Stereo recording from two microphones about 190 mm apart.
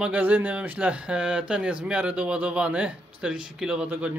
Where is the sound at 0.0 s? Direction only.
5° right (ahead or behind).